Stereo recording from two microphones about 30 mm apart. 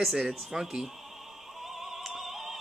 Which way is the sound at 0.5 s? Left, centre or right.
Centre.